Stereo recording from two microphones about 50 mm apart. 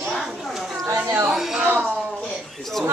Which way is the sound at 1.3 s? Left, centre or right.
Centre.